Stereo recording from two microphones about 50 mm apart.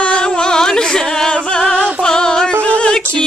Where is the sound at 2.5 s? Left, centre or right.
Left.